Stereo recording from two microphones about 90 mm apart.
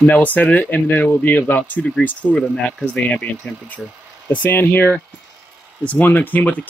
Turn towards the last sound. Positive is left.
turn(degrees=20)  # may be behind; listen again after turning